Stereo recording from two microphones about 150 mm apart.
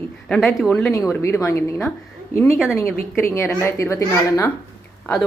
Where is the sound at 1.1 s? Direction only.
20° left (ahead or behind).